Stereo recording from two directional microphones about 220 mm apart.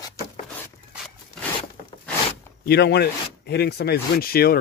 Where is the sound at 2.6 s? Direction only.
45° left (ahead or behind).